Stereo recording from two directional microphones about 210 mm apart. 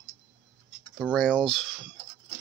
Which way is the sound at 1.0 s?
5° left (ahead or behind).